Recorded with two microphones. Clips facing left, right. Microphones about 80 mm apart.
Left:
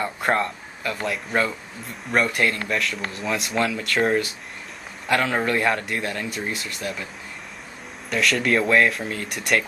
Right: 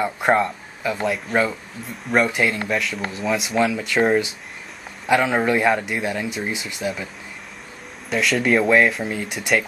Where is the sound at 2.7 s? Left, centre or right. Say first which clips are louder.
Right 2 dB; centre.